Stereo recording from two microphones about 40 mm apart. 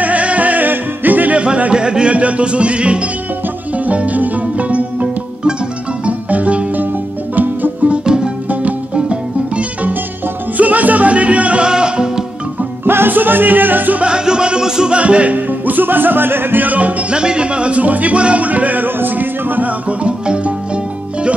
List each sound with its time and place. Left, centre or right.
0.0 s music: right
1.3 s music: right
7.3 s music: right
7.9 s music: right
10.6 s music: right; by 12.3 s centre
12.8 s music: right
14.0 s music: right
15.0 s speech: right
15.3 s music: right
16.6 s speech: right
17.1 s speech: right
18.9 s music: right
19.9 s music: right